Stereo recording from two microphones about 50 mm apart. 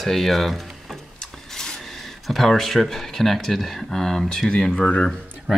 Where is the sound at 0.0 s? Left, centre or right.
Centre.